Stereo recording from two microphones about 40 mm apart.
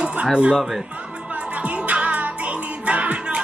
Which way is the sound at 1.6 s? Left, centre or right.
Right.